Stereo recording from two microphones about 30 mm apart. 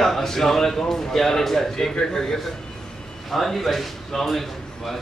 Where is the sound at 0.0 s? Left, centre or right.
Centre.